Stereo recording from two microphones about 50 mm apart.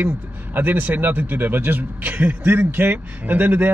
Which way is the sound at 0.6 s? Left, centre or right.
Right.